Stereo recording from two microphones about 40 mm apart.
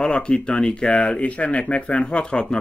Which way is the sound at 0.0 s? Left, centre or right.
Left.